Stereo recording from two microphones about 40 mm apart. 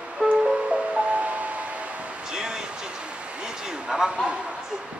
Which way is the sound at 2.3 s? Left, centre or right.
Centre.